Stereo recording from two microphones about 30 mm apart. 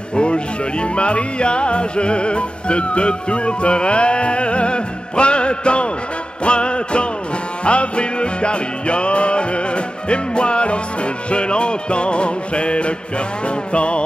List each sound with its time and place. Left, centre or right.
0.1 s speech: left
6.4 s music: left
11.2 s speech: left